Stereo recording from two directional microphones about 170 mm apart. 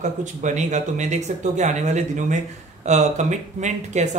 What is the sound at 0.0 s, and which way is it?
Speech, 45° right (ahead or behind).